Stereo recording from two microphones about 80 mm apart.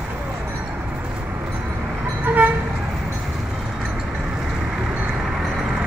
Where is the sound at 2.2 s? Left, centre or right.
Right.